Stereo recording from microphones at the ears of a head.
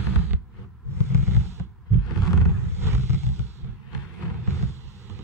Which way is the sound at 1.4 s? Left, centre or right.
Right.